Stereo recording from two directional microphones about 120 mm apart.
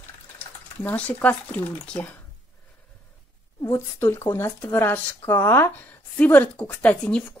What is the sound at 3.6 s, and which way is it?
Speech, 20° left (ahead or behind).